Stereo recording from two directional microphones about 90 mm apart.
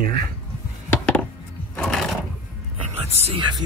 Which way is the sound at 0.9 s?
15° left (ahead or behind).